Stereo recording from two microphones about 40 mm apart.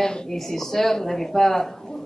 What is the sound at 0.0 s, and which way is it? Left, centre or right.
A man's voice, centre.